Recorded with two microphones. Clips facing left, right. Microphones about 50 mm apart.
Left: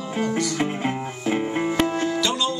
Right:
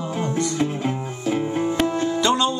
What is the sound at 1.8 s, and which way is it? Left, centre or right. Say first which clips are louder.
Music: right 1 dB; left.